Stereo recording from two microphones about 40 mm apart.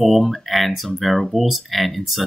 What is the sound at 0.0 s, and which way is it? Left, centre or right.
Speech, centre.